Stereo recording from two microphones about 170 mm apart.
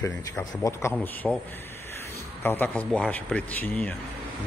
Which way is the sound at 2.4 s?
10° left (ahead or behind).